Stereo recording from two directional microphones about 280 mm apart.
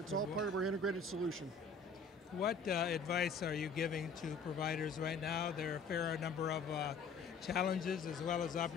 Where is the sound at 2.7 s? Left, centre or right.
Left.